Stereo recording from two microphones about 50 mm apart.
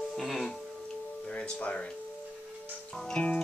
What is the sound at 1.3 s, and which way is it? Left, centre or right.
Music, left.